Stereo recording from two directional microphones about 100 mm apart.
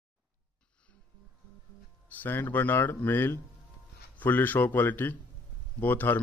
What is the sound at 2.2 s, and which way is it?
A man's voice, 20° left (ahead or behind).